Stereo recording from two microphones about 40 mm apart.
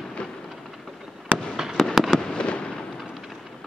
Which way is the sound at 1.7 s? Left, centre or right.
Centre.